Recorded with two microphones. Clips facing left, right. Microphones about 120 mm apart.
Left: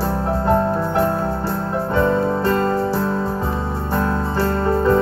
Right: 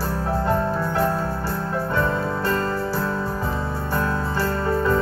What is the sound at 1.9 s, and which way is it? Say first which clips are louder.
Music: left 7 dB; 25° left (ahead or behind).